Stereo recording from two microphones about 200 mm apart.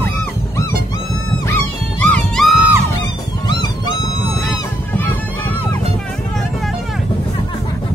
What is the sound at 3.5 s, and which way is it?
Music, 20° left (ahead or behind).